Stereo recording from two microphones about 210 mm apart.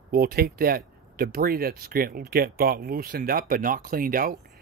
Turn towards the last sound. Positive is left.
turn(degrees=-45)  # may be behind; listen again after turning